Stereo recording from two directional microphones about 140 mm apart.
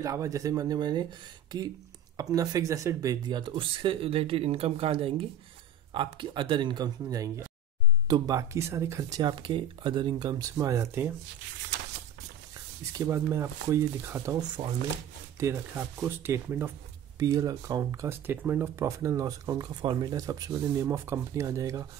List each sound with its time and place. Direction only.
0.0 s speech: 25° right (ahead or behind)
9.2 s speech: 35° right (ahead or behind)
12.9 s speech: 20° right (ahead or behind)